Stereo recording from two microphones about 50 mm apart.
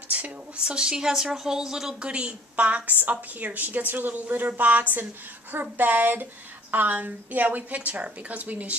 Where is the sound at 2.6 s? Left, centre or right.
Right.